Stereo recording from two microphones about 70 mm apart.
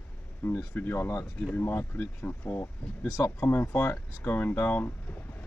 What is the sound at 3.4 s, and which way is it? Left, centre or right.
Speech, left.